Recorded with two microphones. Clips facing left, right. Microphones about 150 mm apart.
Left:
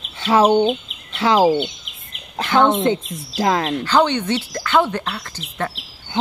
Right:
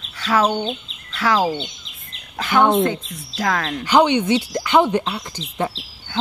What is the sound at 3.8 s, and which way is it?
Speech, 15° right (ahead or behind).